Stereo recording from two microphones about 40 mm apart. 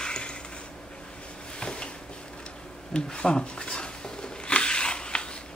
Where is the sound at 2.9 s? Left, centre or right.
Left.